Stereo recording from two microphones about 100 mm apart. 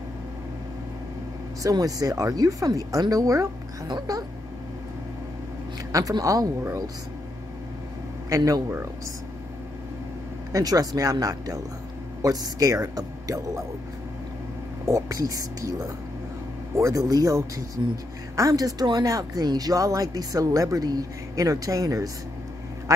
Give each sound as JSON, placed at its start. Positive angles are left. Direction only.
{"t": 1.6, "sound": "speech", "side_deg": -35}
{"t": 3.8, "sound": "speech", "side_deg": -50}
{"t": 5.9, "sound": "speech", "side_deg": -35}
{"t": 8.3, "sound": "speech", "side_deg": -40}
{"t": 8.6, "sound": "speech", "side_deg": -25}
{"t": 10.5, "sound": "speech", "side_deg": -40}
{"t": 14.9, "sound": "speech", "side_deg": -35}